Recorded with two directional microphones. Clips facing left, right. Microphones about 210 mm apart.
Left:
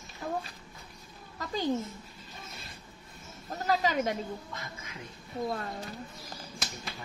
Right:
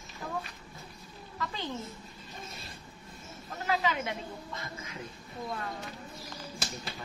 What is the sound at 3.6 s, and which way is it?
Speech, 40° left (ahead or behind).